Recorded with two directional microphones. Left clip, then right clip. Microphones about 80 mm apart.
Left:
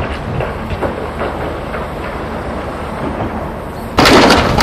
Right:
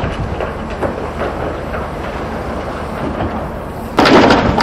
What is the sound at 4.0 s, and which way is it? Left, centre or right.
Bird, left.